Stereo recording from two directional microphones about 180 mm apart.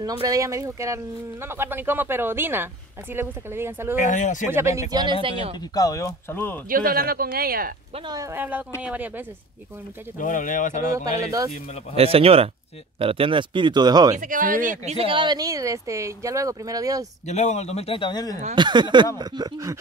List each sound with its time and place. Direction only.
0.0 s speech: 20° right (ahead or behind)
4.0 s speech: 45° left (ahead or behind)
4.5 s speech: 15° right (ahead or behind)
5.2 s speech: 30° right (ahead or behind)
5.8 s speech: 15° left (ahead or behind)
6.7 s speech: 55° right (ahead or behind)
8.1 s speech: 15° right (ahead or behind)
10.1 s speech: 45° left (ahead or behind)
11.1 s speech: 20° right (ahead or behind)
11.9 s speech: 35° right (ahead or behind)
14.1 s speech: 45° right (ahead or behind)
15.0 s speech: 30° right (ahead or behind)
17.3 s a man's voice: 40° left (ahead or behind); by 18.4 s 20° left (ahead or behind)
18.5 s speech: 25° right (ahead or behind)